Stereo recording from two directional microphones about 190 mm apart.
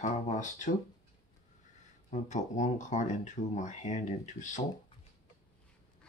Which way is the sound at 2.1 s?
40° left (ahead or behind).